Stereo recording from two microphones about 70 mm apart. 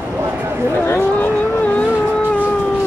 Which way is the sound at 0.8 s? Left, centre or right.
Left.